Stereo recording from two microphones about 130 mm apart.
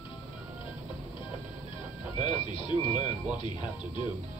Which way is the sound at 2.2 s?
40° left (ahead or behind).